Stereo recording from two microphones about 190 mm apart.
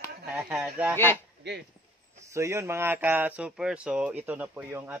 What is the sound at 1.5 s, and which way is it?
Speech, 60° right (ahead or behind).